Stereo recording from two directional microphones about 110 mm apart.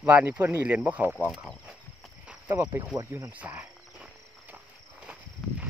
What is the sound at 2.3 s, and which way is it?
Cricket, 20° right (ahead or behind).